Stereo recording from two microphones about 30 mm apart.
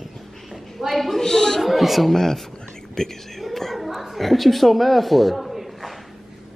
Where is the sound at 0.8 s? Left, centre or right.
Centre.